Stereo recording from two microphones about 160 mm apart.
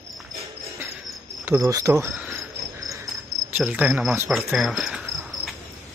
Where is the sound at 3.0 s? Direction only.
Centre (ahead or behind).